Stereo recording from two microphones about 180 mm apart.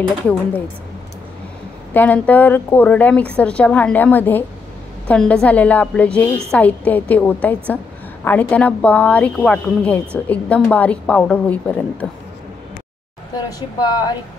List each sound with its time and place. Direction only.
2.0 s a woman's voice: 10° left (ahead or behind)
13.5 s speech: 20° left (ahead or behind)